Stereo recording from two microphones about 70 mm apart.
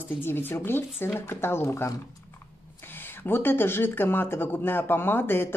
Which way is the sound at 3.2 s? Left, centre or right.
Left.